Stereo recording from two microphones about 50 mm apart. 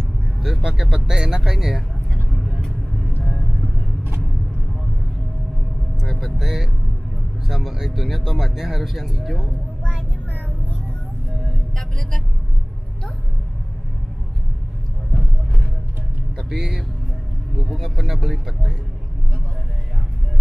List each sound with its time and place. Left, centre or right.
0.4 s speech: centre
2.3 s vehicle: centre
5.9 s speech: centre
16.3 s speech: centre